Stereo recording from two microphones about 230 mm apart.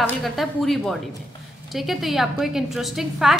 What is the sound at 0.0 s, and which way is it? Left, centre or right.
A woman's voice, centre.